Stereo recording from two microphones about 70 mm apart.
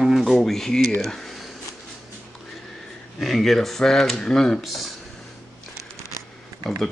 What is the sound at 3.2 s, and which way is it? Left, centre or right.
Speech, centre.